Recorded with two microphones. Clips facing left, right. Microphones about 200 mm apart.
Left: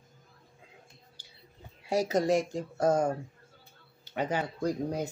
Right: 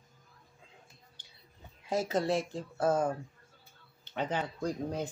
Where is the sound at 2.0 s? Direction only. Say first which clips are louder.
Left 4 dB; 45° left (ahead or behind).